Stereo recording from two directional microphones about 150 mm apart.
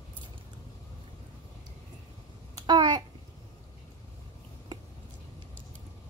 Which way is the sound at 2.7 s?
30° right (ahead or behind).